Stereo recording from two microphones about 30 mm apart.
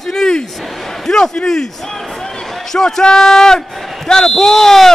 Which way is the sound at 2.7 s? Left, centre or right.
Centre.